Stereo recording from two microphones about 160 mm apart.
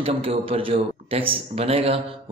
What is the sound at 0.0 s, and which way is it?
A man's voice, 35° right (ahead or behind).